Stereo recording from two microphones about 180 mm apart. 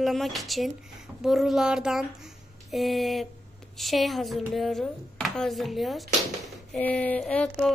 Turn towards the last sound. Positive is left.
turn(degrees=5)  # may be behind; listen again after turning